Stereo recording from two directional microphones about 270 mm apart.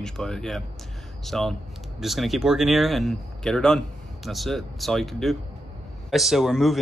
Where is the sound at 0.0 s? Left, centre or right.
Centre.